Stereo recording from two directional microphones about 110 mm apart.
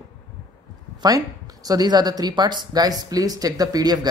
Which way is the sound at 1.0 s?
35° right (ahead or behind).